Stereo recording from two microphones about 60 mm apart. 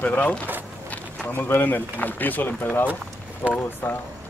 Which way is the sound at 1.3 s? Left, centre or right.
Left.